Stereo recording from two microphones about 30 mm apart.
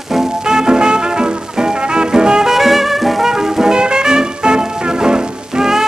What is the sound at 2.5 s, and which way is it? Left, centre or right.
Music, centre.